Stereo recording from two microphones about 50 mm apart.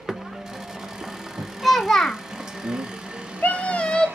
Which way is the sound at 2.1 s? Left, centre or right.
Centre.